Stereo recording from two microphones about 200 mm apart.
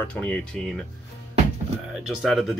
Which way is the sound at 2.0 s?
Centre (ahead or behind).